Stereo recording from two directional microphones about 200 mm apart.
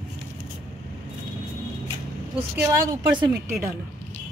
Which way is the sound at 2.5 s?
10° right (ahead or behind).